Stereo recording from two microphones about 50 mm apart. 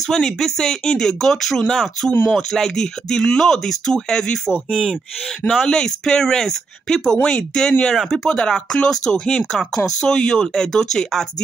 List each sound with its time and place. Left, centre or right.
0.0 s speech: centre
4.5 s speech: centre
5.5 s speech: centre
8.3 s speech: centre